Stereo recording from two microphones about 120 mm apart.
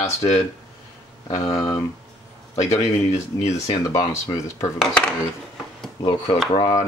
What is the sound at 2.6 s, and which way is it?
Speech, 25° left (ahead or behind).